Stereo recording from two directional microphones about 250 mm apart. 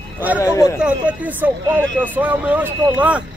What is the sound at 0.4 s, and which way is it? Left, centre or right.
Speech, centre.